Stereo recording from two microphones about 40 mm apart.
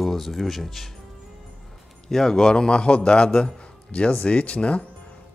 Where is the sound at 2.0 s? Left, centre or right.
Centre.